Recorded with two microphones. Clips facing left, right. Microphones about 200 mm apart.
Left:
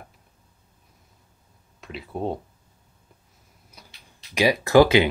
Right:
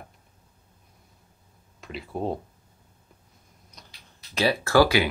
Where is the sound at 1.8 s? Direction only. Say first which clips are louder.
Left 1 dB; centre (ahead or behind).